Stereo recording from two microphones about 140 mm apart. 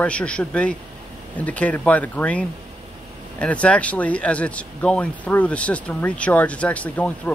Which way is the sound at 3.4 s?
10° left (ahead or behind).